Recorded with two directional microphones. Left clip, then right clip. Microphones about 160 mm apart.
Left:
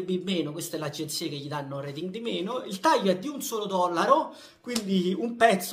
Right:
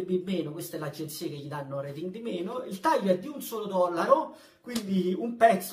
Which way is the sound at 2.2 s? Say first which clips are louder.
Left 3 dB; 30° left (ahead or behind).